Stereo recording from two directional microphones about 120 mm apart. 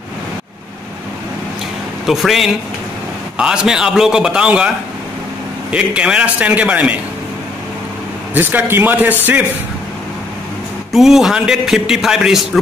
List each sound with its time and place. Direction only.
2.0 s a man's voice: centre (ahead or behind)
8.4 s a man's voice: 15° right (ahead or behind)
10.9 s a man's voice: 5° right (ahead or behind)